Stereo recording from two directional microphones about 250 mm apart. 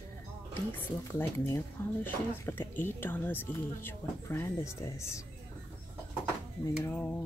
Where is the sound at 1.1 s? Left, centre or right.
Centre.